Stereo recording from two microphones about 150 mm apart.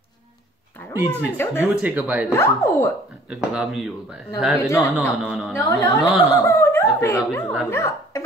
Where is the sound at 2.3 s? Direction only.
20° left (ahead or behind).